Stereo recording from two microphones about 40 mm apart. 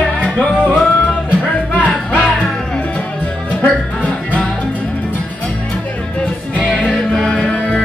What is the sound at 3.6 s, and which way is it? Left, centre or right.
Music, left.